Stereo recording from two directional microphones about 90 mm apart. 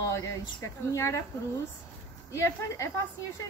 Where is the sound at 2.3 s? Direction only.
35° left (ahead or behind).